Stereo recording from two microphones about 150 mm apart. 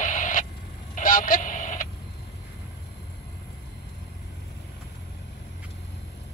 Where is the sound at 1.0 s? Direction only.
65° left (ahead or behind).